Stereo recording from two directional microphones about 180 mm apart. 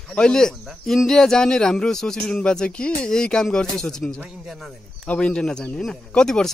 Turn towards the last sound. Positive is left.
turn(degrees=5)  # may be behind; listen again after turning